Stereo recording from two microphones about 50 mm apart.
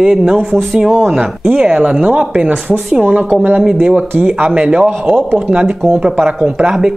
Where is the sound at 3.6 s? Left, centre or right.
Centre.